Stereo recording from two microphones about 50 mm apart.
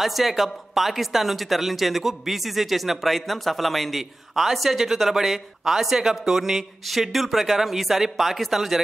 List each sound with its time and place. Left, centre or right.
0.0 s speech: centre